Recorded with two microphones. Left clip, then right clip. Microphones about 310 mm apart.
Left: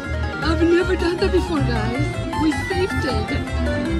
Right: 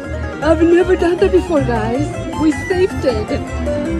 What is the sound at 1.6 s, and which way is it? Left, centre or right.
Speech, right.